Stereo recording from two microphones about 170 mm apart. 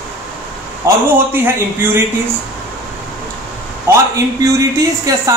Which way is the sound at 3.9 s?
15° right (ahead or behind).